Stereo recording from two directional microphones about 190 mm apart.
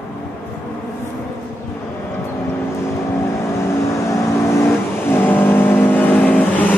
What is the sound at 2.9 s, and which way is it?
Vehicle, 15° left (ahead or behind).